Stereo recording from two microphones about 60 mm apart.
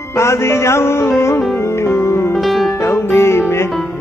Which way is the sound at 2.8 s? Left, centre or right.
Left.